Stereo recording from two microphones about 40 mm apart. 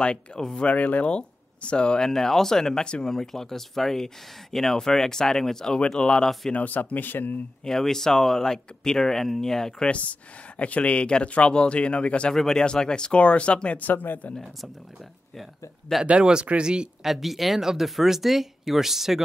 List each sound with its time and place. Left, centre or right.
0.0 s speech: left
0.7 s speech: left
1.0 s speech: left
2.0 s speech: centre
6.5 s speech: left
7.6 s speech: centre
9.8 s speech: left
12.4 s speech: centre
12.7 s speech: centre
13.7 s speech: left
16.1 s speech: right
17.0 s speech: centre